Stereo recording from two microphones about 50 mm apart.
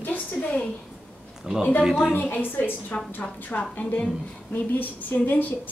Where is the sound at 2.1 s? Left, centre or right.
Left.